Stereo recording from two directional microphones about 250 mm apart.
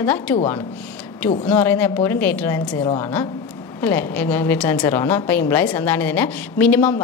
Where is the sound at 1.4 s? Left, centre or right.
Centre.